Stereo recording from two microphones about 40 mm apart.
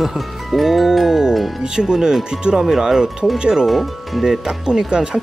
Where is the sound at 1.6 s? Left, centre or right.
Centre.